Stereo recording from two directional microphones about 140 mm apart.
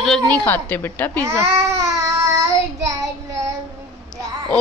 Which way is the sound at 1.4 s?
20° right (ahead or behind).